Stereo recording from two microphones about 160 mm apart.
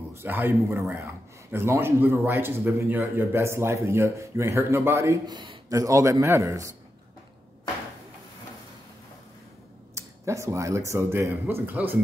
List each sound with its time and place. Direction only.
0.1 s a man's voice: 15° right (ahead or behind)
9.9 s a man's voice: 20° right (ahead or behind)